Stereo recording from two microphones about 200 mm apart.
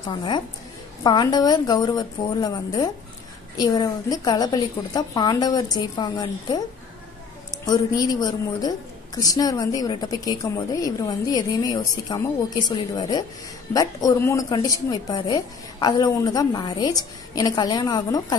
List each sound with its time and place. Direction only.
1.0 s a woman's voice: 20° left (ahead or behind)
7.6 s a woman's voice: 20° left (ahead or behind)